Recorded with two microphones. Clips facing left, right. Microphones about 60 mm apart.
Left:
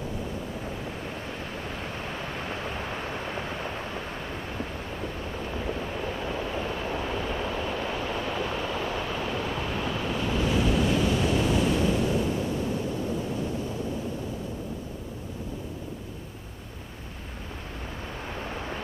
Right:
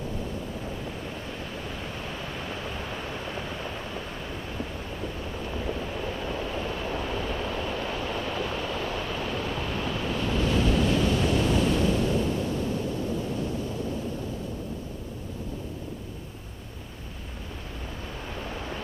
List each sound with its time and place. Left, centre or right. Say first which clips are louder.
1.8 s a sound: left 1 dB; left
5.5 s vehicle: even; left
18.4 s vehicle: even; left